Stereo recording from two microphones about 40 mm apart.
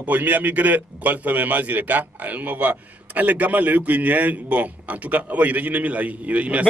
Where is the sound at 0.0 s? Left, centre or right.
Right.